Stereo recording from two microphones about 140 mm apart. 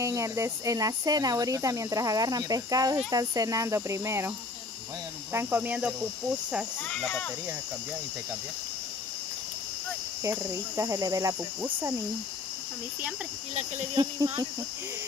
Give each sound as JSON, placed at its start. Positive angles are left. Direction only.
{"t": 0.0, "sound": "speech", "side_deg": -20}
{"t": 5.3, "sound": "speech", "side_deg": -15}
{"t": 6.8, "sound": "speech", "side_deg": 5}
{"t": 10.2, "sound": "speech", "side_deg": -20}
{"t": 13.9, "sound": "speech", "side_deg": -30}